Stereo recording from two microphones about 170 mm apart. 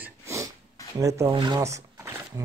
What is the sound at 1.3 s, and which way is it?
Speech, 30° right (ahead or behind).